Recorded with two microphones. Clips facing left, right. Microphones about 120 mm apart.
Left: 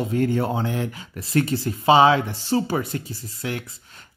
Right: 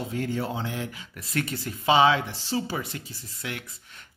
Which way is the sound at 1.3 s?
30° left (ahead or behind).